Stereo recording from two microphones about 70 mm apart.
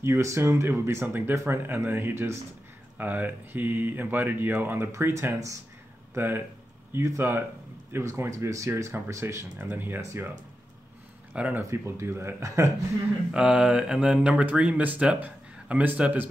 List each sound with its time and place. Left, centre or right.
0.0 s speech: right
1.3 s speech: right
1.6 s speech: right
4.9 s speech: right
6.1 s speech: right
9.6 s speech: right
11.3 s speech: centre
11.7 s speech: right
13.3 s speech: centre